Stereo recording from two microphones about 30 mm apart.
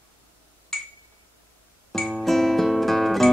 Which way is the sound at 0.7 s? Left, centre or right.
Centre.